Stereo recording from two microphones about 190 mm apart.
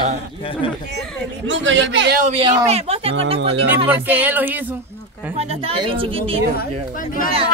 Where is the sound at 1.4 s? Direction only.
80° right.